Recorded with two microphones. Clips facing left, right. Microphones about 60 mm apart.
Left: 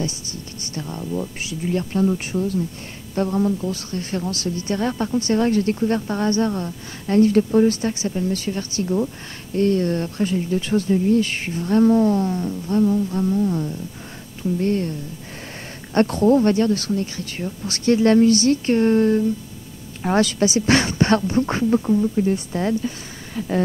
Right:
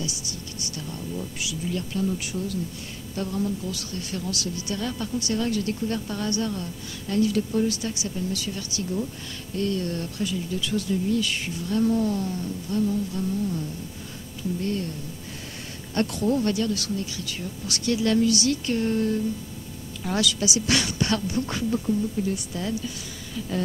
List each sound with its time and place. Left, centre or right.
0.0 s speech: left